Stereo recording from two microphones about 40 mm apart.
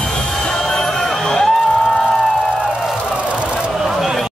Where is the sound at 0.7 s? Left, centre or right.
Centre.